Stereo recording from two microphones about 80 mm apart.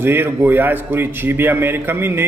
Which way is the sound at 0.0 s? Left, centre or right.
Right.